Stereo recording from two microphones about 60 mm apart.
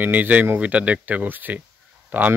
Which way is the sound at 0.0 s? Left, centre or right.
Right.